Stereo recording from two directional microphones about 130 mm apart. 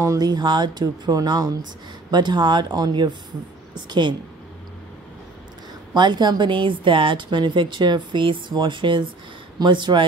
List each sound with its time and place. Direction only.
0.0 s a woman's voice: 30° right (ahead or behind)
5.9 s a woman's voice: 35° right (ahead or behind)